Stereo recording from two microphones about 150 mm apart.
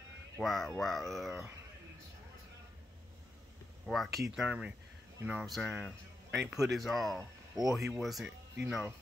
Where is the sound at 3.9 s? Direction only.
Centre (ahead or behind).